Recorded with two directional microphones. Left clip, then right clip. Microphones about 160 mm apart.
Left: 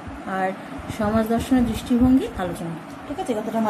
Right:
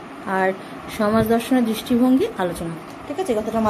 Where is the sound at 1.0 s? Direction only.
20° right (ahead or behind).